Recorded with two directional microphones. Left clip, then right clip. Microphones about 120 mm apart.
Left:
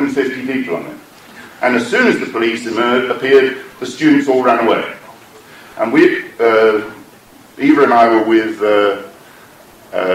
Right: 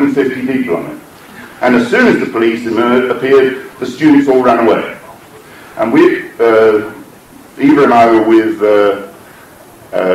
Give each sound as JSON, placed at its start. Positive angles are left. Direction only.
{"t": 0.0, "sound": "a man's voice", "side_deg": 45}